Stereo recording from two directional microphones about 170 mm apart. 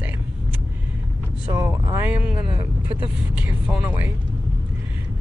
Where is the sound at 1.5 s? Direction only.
20° right (ahead or behind).